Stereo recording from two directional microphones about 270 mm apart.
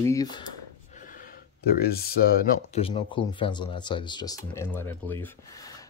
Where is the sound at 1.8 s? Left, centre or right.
Left.